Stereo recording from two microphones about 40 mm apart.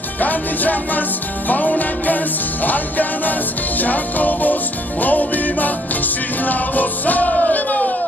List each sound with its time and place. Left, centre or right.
0.2 s music: left